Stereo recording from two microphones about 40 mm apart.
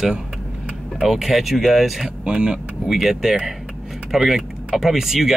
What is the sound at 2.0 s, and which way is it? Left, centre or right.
Speech, right.